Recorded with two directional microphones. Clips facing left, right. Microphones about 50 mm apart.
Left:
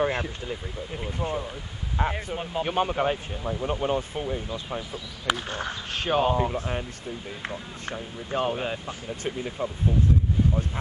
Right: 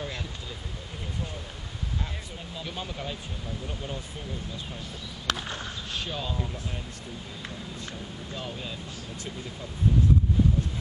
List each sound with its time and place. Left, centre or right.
0.0 s speech: left
2.0 s speech: left
5.2 s speech: centre
5.9 s speech: left
7.8 s speech: left